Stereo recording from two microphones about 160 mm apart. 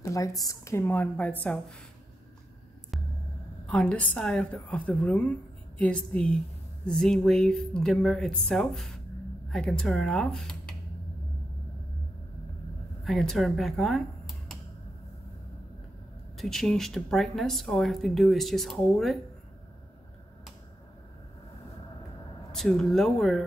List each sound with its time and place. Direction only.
0.0 s a woman's voice: 20° left (ahead or behind)
3.6 s a woman's voice: 10° left (ahead or behind)
13.0 s speech: centre (ahead or behind)
16.3 s speech: centre (ahead or behind)
22.5 s speech: centre (ahead or behind)